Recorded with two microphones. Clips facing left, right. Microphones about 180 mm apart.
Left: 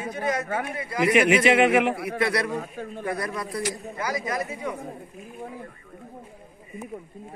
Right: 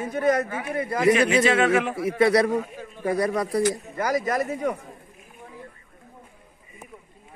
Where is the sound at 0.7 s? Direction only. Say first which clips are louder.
Right 4 dB; 50° right (ahead or behind).